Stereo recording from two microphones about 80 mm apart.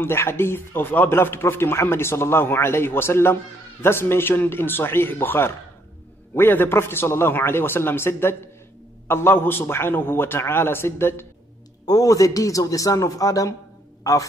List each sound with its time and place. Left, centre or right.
0.0 s a man's voice: left
11.8 s a man's voice: left